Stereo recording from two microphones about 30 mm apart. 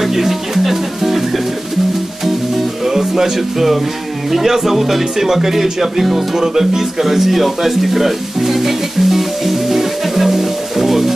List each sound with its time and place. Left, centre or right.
0.0 s music: centre
2.2 s music: centre
2.9 s speech: centre
6.7 s music: centre